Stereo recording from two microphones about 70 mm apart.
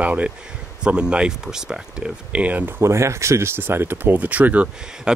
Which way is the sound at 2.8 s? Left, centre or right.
Right.